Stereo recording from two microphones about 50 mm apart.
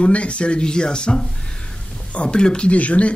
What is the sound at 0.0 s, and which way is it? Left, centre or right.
Speech, left.